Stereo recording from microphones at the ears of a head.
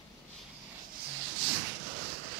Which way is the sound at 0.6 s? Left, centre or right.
Right.